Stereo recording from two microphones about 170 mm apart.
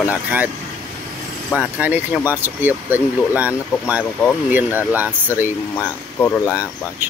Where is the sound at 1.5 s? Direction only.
15° left (ahead or behind).